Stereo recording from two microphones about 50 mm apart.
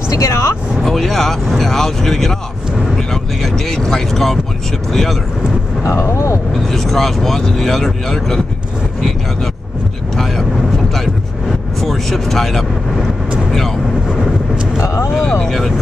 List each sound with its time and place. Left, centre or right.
0.1 s speech: left
0.8 s speech: centre
5.9 s speech: left
6.7 s speech: centre
11.8 s speech: centre
15.4 s speech: centre